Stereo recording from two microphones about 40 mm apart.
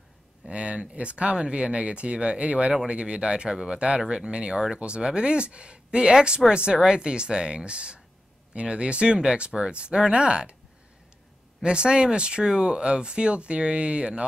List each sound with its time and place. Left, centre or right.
0.5 s speech: right
11.6 s speech: right